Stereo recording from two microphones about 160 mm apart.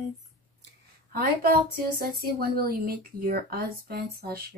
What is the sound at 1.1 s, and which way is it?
A woman's voice, 70° right (ahead or behind).